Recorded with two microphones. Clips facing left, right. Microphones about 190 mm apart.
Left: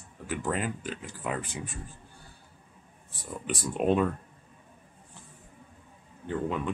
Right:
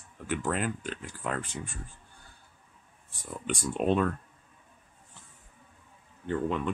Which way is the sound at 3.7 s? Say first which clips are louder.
Left 1 dB; 10° left (ahead or behind).